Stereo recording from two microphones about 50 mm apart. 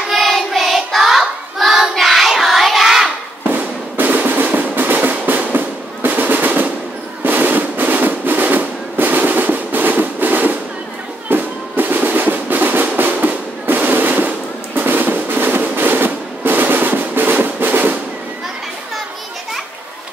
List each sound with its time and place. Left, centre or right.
0.1 s child singing: centre
3.4 s drum: right
7.2 s music: right